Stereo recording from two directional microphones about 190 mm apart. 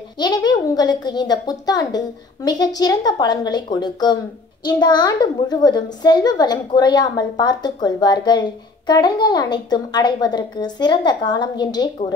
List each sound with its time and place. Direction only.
0.2 s a woman's voice: 20° left (ahead or behind)